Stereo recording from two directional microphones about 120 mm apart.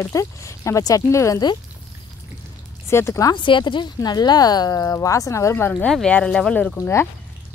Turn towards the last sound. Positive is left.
turn(degrees=20)  # may be behind; listen again after turning